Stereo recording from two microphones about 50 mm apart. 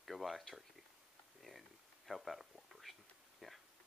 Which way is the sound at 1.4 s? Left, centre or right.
Centre.